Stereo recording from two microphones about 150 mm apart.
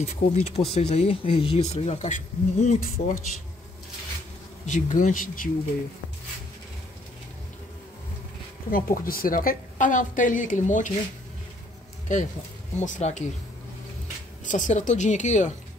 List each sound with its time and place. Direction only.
0.3 s speech: 45° left (ahead or behind)
4.6 s a woman's voice: 55° left (ahead or behind)
8.6 s a woman's voice: 70° left (ahead or behind)
12.1 s a woman's voice: 55° left (ahead or behind)
14.4 s speech: 55° left (ahead or behind)